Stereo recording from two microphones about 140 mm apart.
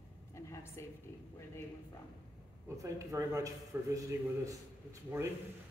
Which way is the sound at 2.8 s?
20° right (ahead or behind).